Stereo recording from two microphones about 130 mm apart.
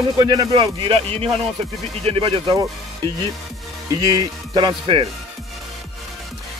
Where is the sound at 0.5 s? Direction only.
45° right (ahead or behind).